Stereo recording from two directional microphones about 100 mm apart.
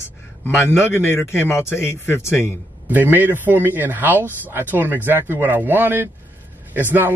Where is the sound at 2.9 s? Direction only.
20° right (ahead or behind).